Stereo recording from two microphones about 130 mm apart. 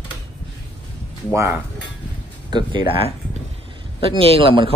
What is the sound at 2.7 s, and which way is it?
Speech, 35° right (ahead or behind).